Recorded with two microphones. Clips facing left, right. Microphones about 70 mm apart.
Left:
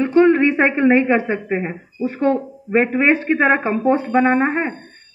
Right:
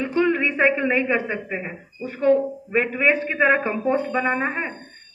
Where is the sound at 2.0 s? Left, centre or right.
Left.